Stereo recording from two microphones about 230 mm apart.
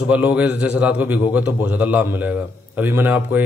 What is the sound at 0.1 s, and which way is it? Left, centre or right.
A man's voice, centre.